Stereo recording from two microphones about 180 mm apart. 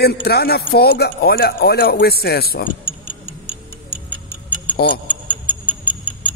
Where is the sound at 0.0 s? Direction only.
60° left (ahead or behind).